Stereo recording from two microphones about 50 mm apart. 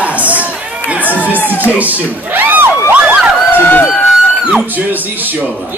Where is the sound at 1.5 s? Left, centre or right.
Right.